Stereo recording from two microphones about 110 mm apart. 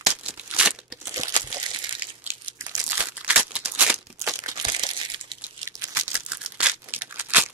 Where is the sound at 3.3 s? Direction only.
10° right (ahead or behind).